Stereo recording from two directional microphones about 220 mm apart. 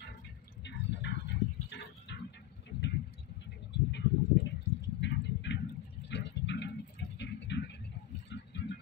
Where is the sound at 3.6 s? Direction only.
50° left (ahead or behind).